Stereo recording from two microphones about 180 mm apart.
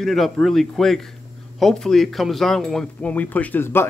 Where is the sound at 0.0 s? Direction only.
Centre (ahead or behind).